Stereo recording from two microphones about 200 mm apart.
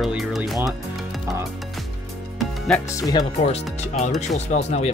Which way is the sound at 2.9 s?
15° left (ahead or behind).